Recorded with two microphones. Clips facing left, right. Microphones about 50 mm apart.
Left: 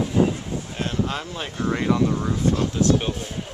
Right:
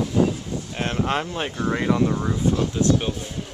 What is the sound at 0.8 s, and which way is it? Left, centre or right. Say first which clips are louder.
Speech: right 3 dB; right.